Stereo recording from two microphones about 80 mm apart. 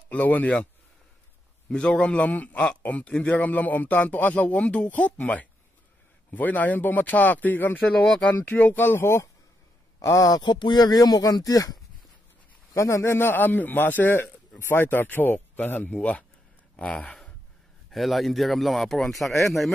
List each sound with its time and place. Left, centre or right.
0.1 s a man's voice: centre
1.7 s a man's voice: centre
8.0 s speech: centre
8.4 s a man's voice: left
10.0 s speech: left
10.5 s speech: left
12.7 s a man's voice: left; by 17.1 s centre
17.9 s speech: centre